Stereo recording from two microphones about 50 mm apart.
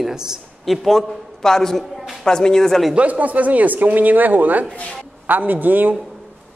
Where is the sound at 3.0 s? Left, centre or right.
Right.